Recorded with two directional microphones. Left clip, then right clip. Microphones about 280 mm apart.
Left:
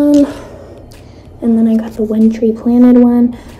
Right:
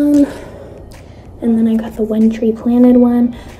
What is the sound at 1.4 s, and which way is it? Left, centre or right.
A woman's voice, centre.